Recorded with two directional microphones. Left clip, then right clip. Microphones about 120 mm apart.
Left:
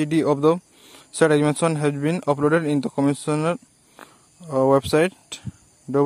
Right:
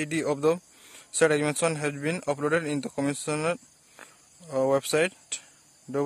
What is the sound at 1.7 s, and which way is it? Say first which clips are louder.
Speech: left 6 dB; 20° left (ahead or behind).